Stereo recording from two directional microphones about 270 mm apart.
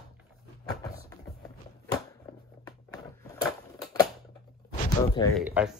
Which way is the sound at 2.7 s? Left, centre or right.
Centre.